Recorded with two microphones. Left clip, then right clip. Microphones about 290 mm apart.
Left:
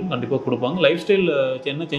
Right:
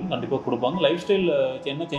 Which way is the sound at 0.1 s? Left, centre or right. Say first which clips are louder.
Left 2 dB; left.